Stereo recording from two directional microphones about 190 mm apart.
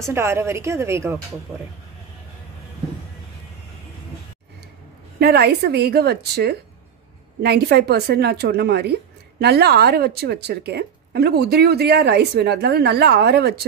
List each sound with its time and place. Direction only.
0.0 s a woman's voice: 15° right (ahead or behind)
5.2 s speech: 55° right (ahead or behind)